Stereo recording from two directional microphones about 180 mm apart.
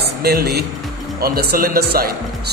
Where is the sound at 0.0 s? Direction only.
60° right (ahead or behind).